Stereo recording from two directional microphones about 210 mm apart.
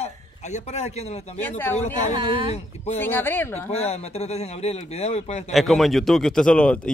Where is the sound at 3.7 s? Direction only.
30° left (ahead or behind).